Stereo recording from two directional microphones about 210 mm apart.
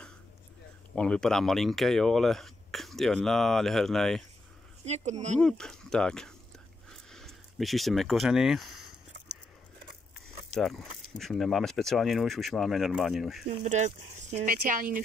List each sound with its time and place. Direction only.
0.9 s speech: 5° left (ahead or behind)
4.8 s speech: 30° right (ahead or behind)
5.4 s speech: 5° left (ahead or behind)
6.9 s a sound: centre (ahead or behind)
10.5 s speech: centre (ahead or behind)
13.7 s speech: 35° right (ahead or behind)